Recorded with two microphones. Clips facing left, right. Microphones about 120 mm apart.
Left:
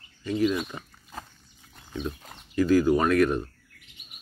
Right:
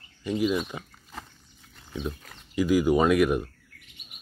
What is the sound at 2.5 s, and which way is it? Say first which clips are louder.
Speech: left 1 dB; 15° right (ahead or behind).